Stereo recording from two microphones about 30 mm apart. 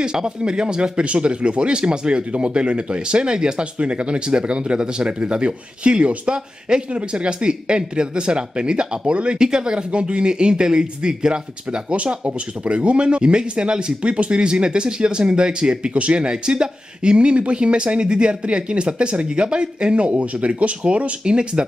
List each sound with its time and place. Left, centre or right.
0.0 s speech: right
1.0 s speech: right
3.7 s speech: right
6.9 s speech: right
9.1 s speech: right
9.4 s speech: right
9.8 s speech: right
20.1 s speech: right
21.2 s speech: right